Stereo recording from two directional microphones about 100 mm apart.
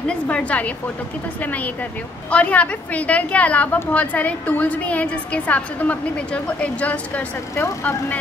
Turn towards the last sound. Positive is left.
turn(degrees=30)  # may be behind; listen again after turning